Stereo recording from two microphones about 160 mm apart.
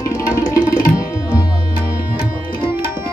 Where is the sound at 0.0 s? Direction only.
20° left (ahead or behind).